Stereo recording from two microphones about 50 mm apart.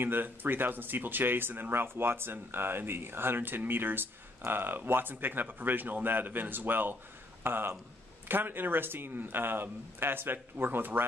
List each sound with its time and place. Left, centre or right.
0.0 s speech: right